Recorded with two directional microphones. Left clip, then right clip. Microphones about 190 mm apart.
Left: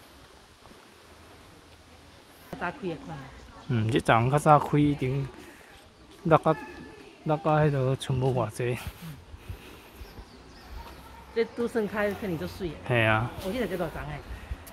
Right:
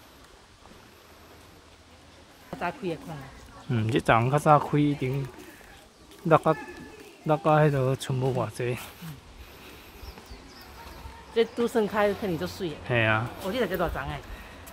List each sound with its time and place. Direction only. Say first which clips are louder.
2.6 s speech: right 2 dB; 50° right (ahead or behind)
3.7 s speech: right 1 dB; centre (ahead or behind)
6.2 s speech: right 1 dB; centre (ahead or behind)
11.3 s speech: right 3 dB; 30° right (ahead or behind)
12.8 s speech: even; 10° left (ahead or behind)
13.5 s speech: right 5 dB; 25° right (ahead or behind)